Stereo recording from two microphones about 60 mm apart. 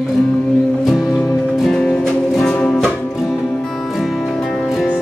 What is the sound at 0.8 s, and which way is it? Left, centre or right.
Music, centre.